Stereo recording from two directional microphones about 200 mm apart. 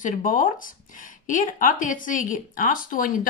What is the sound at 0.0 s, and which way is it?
Speech, 40° left (ahead or behind).